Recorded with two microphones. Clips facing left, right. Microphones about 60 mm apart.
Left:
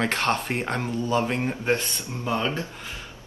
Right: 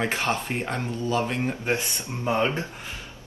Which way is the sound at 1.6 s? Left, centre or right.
Right.